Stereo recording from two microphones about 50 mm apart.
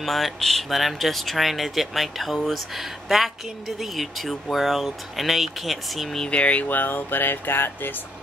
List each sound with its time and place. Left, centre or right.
0.0 s speech: centre
6.2 s speech: left
6.7 s speech: left